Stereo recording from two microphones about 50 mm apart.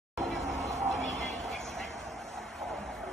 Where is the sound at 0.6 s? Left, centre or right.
Right.